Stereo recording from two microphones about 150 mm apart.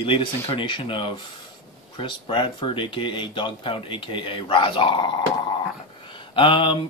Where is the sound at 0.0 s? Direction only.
35° left (ahead or behind).